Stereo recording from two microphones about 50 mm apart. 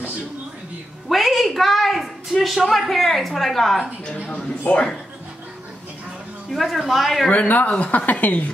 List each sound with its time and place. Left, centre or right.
1.0 s a sound: centre
2.4 s a woman's voice: centre
4.7 s speech: left
6.5 s a woman's voice: centre
7.2 s speech: left